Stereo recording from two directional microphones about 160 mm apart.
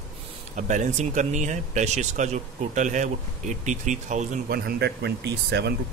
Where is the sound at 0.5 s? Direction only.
50° right (ahead or behind).